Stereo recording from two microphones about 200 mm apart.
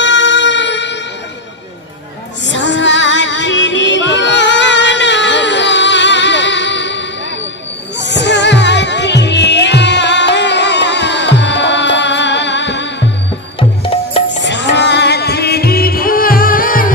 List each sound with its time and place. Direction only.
0.0 s music: 65° left (ahead or behind)
2.4 s music: 65° left (ahead or behind)
13.6 s music: 25° left (ahead or behind)
14.4 s music: 60° left (ahead or behind); by 16.9 s 45° left (ahead or behind)